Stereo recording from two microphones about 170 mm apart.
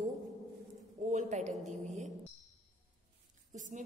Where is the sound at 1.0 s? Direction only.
45° right (ahead or behind).